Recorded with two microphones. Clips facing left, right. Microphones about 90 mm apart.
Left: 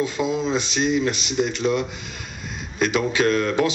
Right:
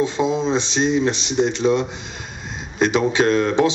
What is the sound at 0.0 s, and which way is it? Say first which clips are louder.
Speech: right 3 dB; 30° right (ahead or behind).